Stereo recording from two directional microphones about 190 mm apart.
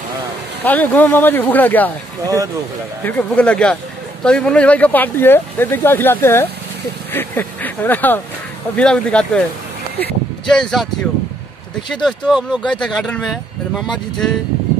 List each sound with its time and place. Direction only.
0.7 s speech: 10° left (ahead or behind)
2.2 s speech: 15° right (ahead or behind)
3.0 s speech: 10° left (ahead or behind)
10.5 s speech: centre (ahead or behind)
11.9 s speech: centre (ahead or behind)